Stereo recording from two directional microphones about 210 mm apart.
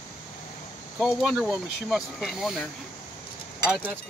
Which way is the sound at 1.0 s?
5° right (ahead or behind).